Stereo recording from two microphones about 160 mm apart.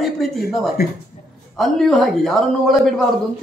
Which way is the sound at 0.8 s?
70° left (ahead or behind).